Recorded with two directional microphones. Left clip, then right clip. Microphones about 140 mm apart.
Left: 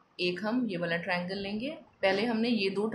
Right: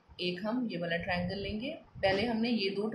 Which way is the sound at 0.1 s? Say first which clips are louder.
Left 4 dB; 40° left (ahead or behind).